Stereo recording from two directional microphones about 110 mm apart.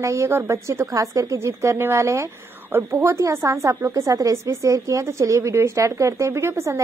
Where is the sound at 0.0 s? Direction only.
25° right (ahead or behind).